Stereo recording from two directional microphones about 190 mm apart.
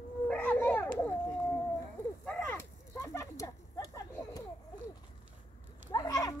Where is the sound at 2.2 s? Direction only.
10° left (ahead or behind).